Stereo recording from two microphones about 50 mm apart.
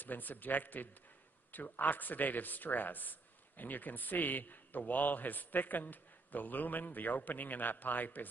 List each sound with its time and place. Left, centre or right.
0.0 s speech: left